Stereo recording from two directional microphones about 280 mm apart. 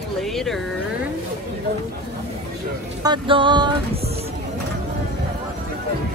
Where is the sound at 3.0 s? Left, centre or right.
Centre.